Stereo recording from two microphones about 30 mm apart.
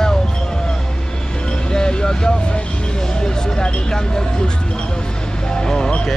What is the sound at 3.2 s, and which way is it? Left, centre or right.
Speech, left.